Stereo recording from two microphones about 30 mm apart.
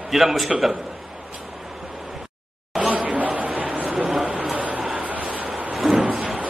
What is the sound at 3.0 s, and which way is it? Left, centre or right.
Chatter, right.